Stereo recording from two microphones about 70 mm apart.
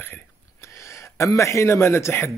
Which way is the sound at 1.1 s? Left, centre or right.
Left.